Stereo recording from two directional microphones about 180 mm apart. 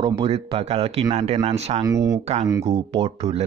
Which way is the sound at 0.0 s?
30° right (ahead or behind).